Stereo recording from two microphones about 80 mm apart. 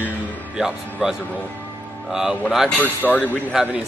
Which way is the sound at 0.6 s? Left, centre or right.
Centre.